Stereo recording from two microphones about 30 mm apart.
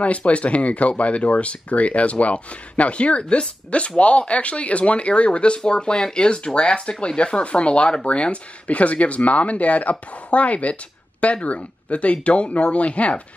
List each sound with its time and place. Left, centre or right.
0.0 s speech: left
7.4 s speech: left